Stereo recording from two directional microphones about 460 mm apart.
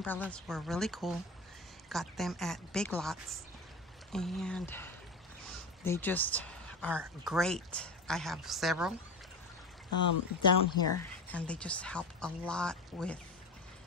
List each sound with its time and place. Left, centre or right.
0.0 s speech: centre
10.5 s speech: left
11.2 s speech: centre